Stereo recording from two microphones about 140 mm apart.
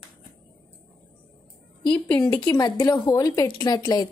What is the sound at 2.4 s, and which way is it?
Speech, 30° left (ahead or behind).